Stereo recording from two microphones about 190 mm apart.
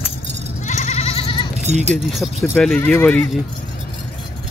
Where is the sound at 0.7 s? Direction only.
35° left (ahead or behind).